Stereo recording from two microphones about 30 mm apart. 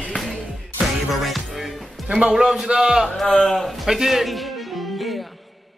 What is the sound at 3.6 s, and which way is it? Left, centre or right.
Speech, centre.